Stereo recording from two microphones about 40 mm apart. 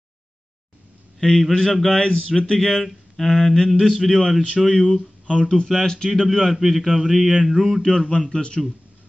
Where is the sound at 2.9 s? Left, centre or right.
Centre.